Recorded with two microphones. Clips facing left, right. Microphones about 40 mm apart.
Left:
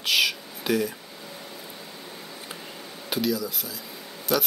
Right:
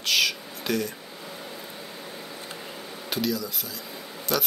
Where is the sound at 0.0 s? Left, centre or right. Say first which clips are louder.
Left 1 dB; centre.